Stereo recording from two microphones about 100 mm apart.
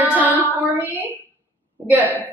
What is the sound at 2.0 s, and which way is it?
Speech, 15° left (ahead or behind).